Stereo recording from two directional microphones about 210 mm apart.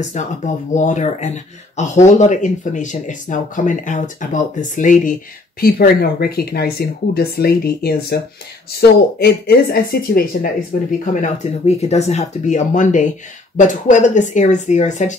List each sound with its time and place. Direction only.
0.2 s speech: 35° left (ahead or behind)